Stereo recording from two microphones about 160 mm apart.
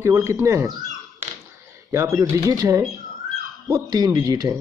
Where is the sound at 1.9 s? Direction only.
20° right (ahead or behind).